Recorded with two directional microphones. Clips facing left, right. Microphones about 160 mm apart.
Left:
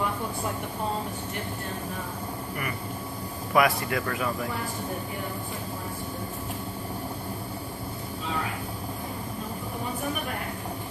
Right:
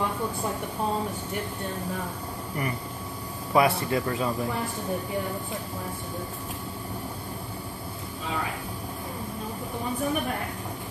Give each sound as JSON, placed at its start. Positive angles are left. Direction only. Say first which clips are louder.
{"t": 3.5, "sound": "speech", "louder": "right 1 dB", "side_deg": -30}